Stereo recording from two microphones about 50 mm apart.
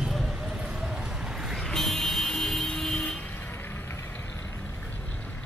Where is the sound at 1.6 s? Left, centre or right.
Centre.